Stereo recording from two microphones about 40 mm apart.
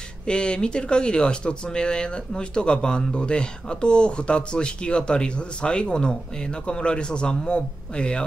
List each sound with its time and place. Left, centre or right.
0.3 s speech: left